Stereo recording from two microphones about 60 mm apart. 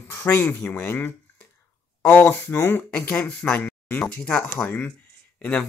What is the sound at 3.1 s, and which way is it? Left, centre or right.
Speech, centre.